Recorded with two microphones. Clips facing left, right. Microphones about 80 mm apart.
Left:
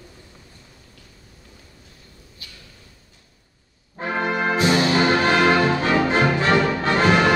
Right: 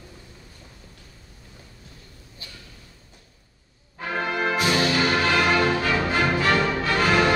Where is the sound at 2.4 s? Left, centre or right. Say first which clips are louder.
Right 2 dB; right.